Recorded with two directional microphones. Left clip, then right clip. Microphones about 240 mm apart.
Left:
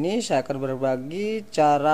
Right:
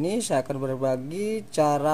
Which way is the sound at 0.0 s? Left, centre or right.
Centre.